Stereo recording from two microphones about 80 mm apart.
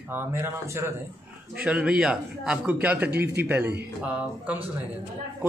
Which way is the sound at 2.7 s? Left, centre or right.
Right.